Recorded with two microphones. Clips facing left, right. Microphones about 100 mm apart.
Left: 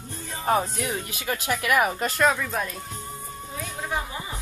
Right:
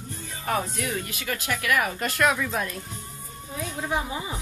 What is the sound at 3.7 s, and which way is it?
Speech, 10° right (ahead or behind).